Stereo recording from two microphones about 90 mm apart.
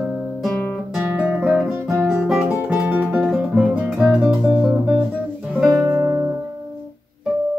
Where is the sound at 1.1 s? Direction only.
10° right (ahead or behind).